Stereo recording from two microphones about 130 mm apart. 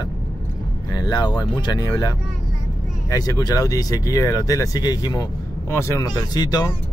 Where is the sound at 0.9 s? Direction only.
30° left (ahead or behind).